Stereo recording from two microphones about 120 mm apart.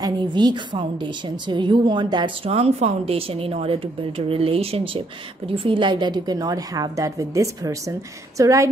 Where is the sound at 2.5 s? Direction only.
60° right (ahead or behind).